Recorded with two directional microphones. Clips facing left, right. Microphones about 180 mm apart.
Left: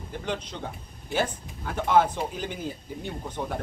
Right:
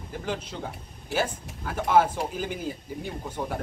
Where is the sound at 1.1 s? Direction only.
75° right (ahead or behind).